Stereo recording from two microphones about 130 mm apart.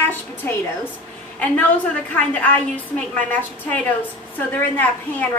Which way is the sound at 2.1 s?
10° left (ahead or behind).